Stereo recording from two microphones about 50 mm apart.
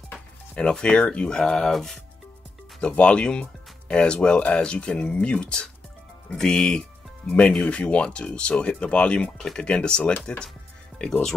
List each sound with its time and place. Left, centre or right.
0.6 s speech: left
2.8 s speech: left